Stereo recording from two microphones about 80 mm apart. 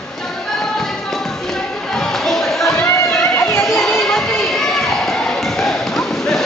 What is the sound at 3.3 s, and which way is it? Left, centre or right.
Chatter, left.